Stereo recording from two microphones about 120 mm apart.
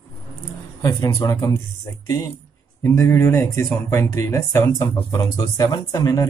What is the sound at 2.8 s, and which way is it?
Speech, 25° left (ahead or behind).